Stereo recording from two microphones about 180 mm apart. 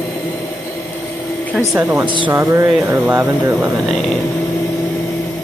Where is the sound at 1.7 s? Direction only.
10° right (ahead or behind).